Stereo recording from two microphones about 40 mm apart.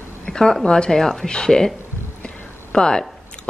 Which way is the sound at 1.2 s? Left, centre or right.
Centre.